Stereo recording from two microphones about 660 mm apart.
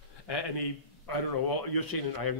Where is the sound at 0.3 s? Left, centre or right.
Left.